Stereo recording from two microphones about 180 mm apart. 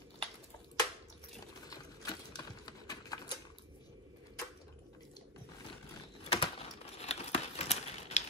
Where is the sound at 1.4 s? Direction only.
20° left (ahead or behind).